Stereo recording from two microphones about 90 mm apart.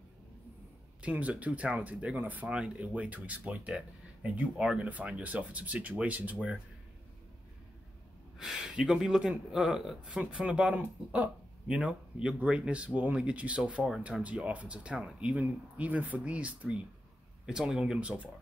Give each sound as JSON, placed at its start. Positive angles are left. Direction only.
{"t": 1.0, "sound": "speech", "side_deg": -15}
{"t": 8.4, "sound": "speech", "side_deg": -5}
{"t": 14.2, "sound": "speech", "side_deg": -15}